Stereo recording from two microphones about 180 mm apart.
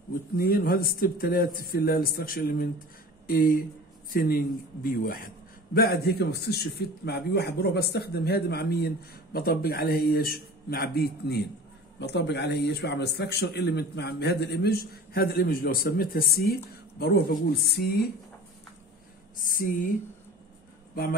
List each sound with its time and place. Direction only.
0.4 s a man's voice: 55° left (ahead or behind)
19.3 s speech: 50° left (ahead or behind)